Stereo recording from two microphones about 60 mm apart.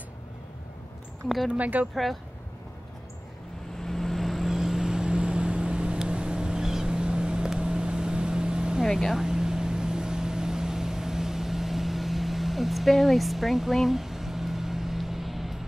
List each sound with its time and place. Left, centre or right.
1.6 s speech: right
3.8 s vehicle: centre
8.8 s vehicle: centre